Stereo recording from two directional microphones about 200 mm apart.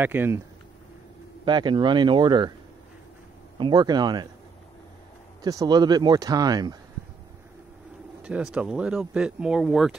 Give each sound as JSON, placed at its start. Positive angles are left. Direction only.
{"t": 0.0, "sound": "speech", "side_deg": -10}
{"t": 1.4, "sound": "speech", "side_deg": -20}
{"t": 3.5, "sound": "speech", "side_deg": -20}
{"t": 5.4, "sound": "speech", "side_deg": -20}
{"t": 8.2, "sound": "speech", "side_deg": -5}